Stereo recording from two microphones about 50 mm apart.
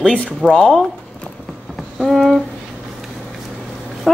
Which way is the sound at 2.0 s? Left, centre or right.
Centre.